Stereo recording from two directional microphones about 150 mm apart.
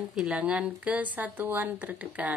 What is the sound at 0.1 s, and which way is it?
A woman's voice, 5° right (ahead or behind).